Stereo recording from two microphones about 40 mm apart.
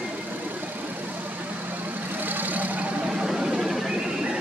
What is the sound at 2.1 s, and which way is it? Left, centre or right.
Vehicle, right.